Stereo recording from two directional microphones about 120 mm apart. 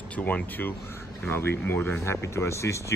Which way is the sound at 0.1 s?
10° left (ahead or behind).